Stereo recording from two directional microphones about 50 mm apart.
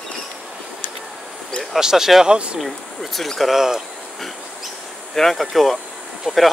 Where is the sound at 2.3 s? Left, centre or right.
Right.